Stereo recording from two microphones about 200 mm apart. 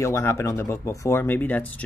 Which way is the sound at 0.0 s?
15° left (ahead or behind).